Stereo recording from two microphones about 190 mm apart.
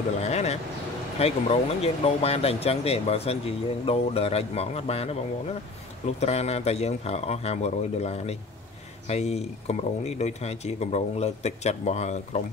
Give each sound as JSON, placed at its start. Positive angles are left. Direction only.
{"t": 0.2, "sound": "speech", "side_deg": 35}